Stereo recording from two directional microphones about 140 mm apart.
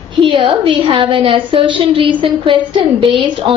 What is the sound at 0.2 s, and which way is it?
A woman's voice, 35° right (ahead or behind).